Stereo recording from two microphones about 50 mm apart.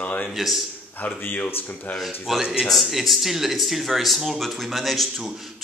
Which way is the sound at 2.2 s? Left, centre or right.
Centre.